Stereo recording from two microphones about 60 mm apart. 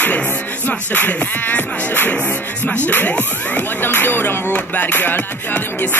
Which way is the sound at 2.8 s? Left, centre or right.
Left.